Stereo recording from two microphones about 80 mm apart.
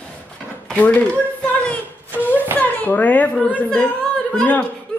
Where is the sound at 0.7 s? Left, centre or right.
Centre.